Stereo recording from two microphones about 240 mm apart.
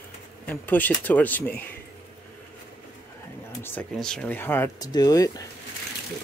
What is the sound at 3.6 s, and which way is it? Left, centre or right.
Speech, centre.